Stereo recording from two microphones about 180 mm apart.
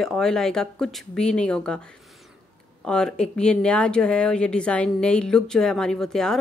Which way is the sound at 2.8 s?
5° left (ahead or behind).